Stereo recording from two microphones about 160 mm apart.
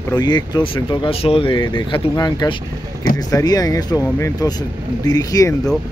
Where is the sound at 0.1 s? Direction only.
25° left (ahead or behind).